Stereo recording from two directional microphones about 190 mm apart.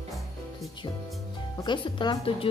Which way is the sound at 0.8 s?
25° left (ahead or behind).